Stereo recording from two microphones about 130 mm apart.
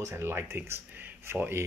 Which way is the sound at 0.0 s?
20° right (ahead or behind).